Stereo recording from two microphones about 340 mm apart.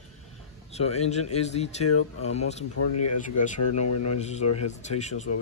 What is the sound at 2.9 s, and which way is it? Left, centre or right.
Speech, left.